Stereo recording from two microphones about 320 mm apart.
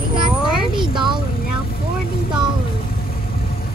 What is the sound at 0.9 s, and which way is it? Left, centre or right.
Vehicle, centre.